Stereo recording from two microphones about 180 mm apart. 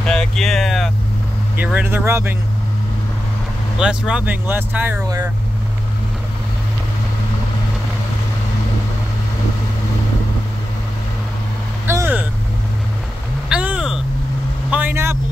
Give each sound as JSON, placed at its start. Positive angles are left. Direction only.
{"t": 0.0, "sound": "a sound", "side_deg": 5}
{"t": 1.6, "sound": "speech", "side_deg": -10}
{"t": 3.8, "sound": "speech", "side_deg": -5}
{"t": 11.8, "sound": "vehicle", "side_deg": -15}
{"t": 13.5, "sound": "a sound", "side_deg": -5}
{"t": 14.7, "sound": "vehicle", "side_deg": -10}